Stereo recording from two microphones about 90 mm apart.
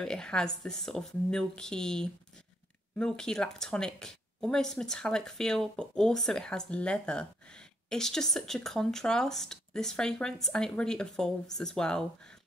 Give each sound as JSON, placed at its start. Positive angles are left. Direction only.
{"t": 0.0, "sound": "speech", "side_deg": 10}